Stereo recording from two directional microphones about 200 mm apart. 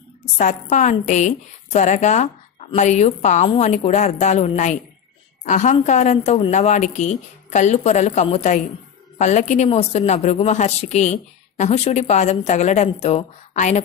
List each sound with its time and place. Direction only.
0.4 s a woman's voice: 35° left (ahead or behind)